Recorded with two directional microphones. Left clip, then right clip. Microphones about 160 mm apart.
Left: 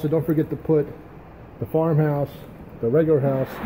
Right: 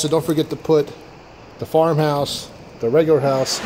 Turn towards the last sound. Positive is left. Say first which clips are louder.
# right 4 dB
turn(degrees=-10)  # may be behind; listen again after turning